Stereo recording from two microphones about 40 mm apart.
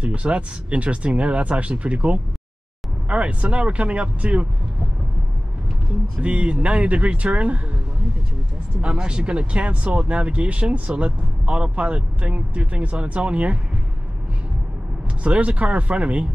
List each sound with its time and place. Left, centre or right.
0.0 s speech: right
6.2 s speech: right
8.8 s speech: right
15.2 s speech: right